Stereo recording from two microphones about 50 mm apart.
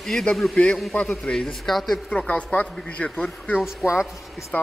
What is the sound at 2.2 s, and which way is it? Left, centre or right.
Speech, left.